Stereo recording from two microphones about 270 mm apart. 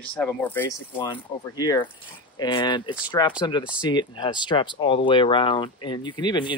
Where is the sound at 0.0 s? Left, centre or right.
Centre.